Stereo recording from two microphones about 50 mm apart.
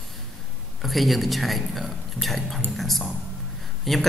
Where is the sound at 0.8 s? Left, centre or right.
Centre.